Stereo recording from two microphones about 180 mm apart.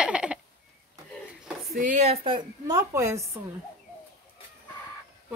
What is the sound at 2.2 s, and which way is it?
Speech, 25° right (ahead or behind).